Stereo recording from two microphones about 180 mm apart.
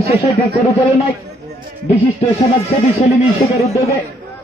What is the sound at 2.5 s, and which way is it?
Speech, 35° left (ahead or behind).